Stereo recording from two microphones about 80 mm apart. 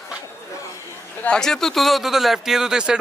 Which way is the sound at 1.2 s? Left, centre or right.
Centre.